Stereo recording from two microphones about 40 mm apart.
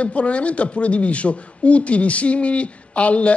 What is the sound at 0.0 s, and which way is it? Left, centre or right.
A man's voice, left.